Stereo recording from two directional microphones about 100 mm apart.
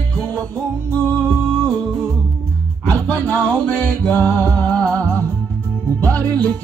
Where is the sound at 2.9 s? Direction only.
15° left (ahead or behind).